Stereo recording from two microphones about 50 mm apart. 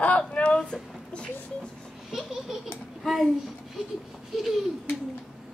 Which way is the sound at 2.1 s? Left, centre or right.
Centre.